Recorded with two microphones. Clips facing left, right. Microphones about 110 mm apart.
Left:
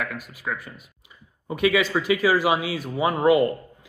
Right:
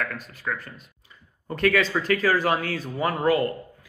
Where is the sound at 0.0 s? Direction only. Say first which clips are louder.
Even; 10° left (ahead or behind).